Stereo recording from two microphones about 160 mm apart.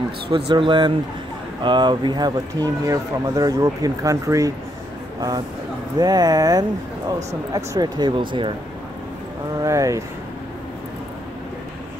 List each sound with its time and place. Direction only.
0.5 s speech: 30° right (ahead or behind)
5.9 s speech: 25° right (ahead or behind)
9.6 s speech: 20° right (ahead or behind)